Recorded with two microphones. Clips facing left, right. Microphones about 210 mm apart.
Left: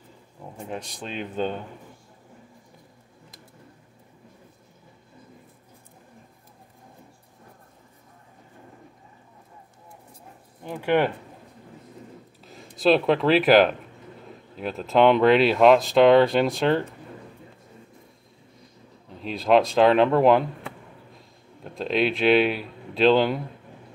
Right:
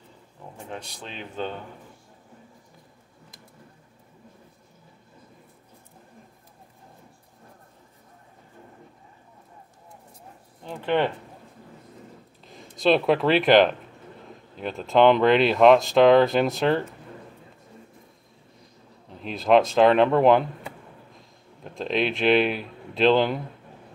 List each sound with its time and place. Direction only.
0.7 s speech: 15° left (ahead or behind)
10.6 s speech: 10° left (ahead or behind)
12.4 s speech: centre (ahead or behind)
19.0 s speech: centre (ahead or behind)
21.7 s speech: centre (ahead or behind)